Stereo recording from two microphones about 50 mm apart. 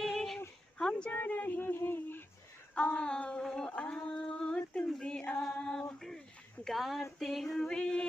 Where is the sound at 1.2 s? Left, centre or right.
Left.